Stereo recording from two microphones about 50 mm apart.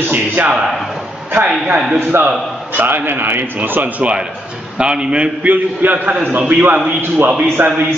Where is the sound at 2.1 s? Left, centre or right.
Right.